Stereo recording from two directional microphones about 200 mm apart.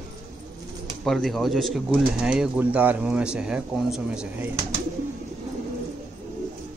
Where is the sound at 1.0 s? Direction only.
Centre (ahead or behind).